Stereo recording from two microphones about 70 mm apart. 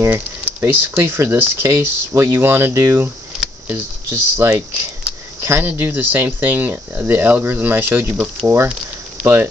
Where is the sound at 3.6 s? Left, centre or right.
Right.